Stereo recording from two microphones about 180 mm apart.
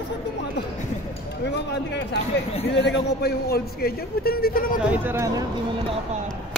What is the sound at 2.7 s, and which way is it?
A man's voice, 75° left (ahead or behind).